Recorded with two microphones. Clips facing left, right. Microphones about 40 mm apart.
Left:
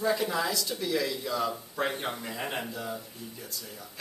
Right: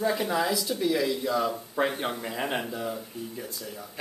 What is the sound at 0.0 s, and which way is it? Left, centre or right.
Speech, centre.